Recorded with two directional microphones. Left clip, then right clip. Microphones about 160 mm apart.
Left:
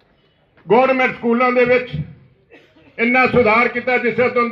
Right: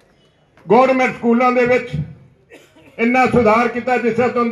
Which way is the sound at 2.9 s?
5° right (ahead or behind).